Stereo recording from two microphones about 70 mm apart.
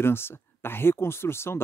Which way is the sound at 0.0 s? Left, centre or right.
Left.